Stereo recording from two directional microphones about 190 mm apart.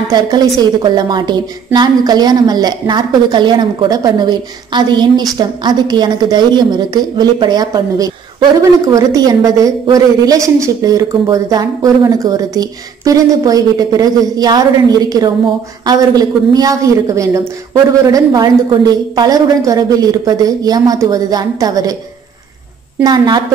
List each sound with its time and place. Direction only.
0.1 s a woman's voice: 20° right (ahead or behind)
23.0 s a woman's voice: 20° right (ahead or behind)